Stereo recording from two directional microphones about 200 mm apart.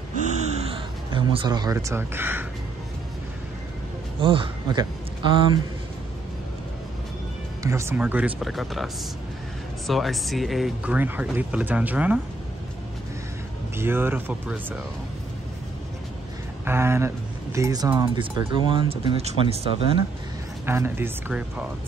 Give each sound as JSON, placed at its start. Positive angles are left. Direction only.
{"t": 0.1, "sound": "gasp", "side_deg": -35}
{"t": 4.2, "sound": "speech", "side_deg": -25}
{"t": 7.6, "sound": "speech", "side_deg": -15}
{"t": 13.7, "sound": "speech", "side_deg": -10}
{"t": 16.6, "sound": "speech", "side_deg": -10}
{"t": 20.6, "sound": "speech", "side_deg": -10}